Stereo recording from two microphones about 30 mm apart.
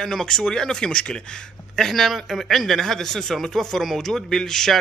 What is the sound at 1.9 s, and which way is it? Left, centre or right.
Speech, centre.